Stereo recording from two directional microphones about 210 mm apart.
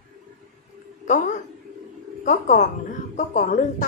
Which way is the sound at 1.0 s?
35° left (ahead or behind).